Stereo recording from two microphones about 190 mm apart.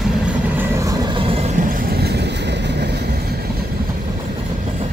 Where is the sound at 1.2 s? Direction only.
30° right (ahead or behind).